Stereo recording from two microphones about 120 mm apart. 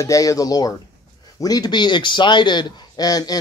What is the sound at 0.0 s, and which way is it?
Speech, 30° left (ahead or behind).